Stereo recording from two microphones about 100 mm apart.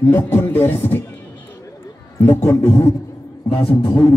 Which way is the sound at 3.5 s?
70° left (ahead or behind).